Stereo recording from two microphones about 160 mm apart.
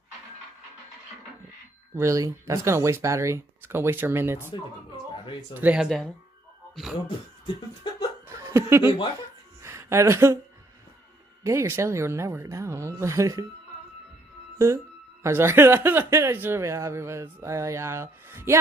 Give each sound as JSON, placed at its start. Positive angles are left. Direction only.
{"t": 2.0, "sound": "speech", "side_deg": -20}
{"t": 5.5, "sound": "speech", "side_deg": -10}
{"t": 7.8, "sound": "chuckle", "side_deg": 25}
{"t": 8.4, "sound": "speech", "side_deg": -15}
{"t": 11.4, "sound": "speech", "side_deg": -15}
{"t": 15.2, "sound": "speech", "side_deg": -15}